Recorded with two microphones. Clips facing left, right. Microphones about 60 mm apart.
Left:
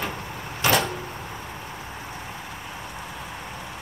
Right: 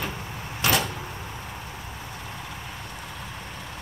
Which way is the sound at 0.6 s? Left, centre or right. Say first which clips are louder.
Left 3 dB; left.